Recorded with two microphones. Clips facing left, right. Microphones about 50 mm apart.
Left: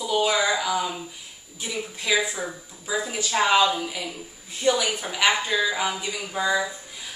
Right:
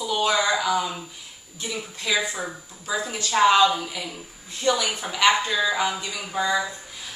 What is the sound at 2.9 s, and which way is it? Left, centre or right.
A woman's voice, centre.